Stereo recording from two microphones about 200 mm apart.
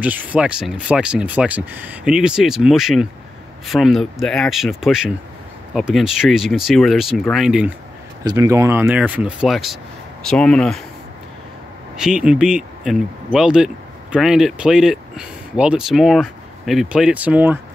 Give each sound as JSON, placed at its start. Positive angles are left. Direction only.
{"t": 0.0, "sound": "speech", "side_deg": -5}
{"t": 8.2, "sound": "speech", "side_deg": -15}
{"t": 12.0, "sound": "speech", "side_deg": -5}